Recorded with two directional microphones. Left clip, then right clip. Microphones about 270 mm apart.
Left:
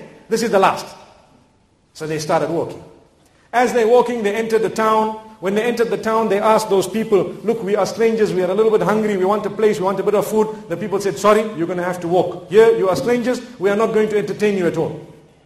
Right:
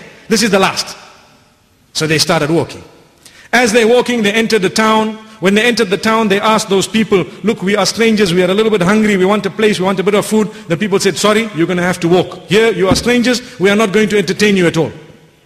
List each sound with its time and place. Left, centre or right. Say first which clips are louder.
0.3 s a man's voice: right 3 dB; right
2.0 s a man's voice: right 6 dB; right
3.4 s a man's voice: right 5 dB; right